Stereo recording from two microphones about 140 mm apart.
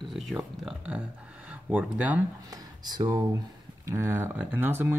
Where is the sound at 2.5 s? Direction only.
30° right (ahead or behind).